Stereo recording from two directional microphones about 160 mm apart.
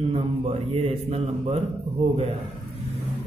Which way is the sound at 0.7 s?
40° right (ahead or behind).